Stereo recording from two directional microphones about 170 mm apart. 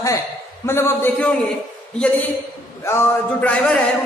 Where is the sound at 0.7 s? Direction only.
15° left (ahead or behind).